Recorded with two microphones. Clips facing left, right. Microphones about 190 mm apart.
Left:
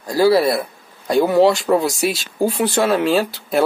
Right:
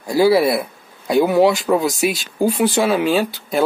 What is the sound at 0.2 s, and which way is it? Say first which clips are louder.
Speech: even; 10° right (ahead or behind).